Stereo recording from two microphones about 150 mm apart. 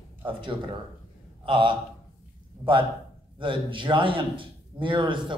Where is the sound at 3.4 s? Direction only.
35° right (ahead or behind).